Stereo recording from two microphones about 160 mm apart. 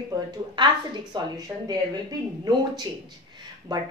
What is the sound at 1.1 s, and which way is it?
A woman's voice, 25° right (ahead or behind).